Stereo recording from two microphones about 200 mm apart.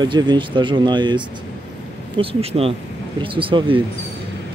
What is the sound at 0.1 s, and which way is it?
Speech, 25° right (ahead or behind).